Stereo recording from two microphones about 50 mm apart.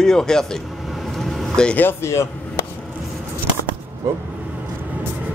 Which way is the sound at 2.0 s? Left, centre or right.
Left.